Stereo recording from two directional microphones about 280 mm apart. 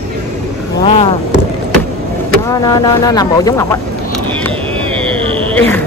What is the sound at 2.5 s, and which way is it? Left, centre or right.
Speech, centre.